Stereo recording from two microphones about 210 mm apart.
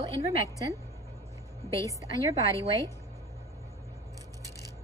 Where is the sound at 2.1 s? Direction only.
15° left (ahead or behind).